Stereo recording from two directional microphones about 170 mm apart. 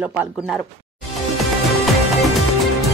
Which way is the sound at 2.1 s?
Centre (ahead or behind).